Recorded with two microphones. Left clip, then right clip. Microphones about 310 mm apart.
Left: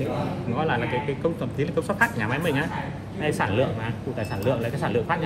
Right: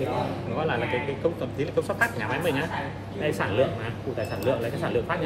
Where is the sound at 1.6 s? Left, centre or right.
Left.